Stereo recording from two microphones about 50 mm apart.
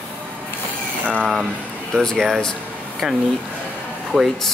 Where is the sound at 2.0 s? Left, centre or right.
Centre.